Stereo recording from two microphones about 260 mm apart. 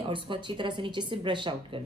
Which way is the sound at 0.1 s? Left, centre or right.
Centre.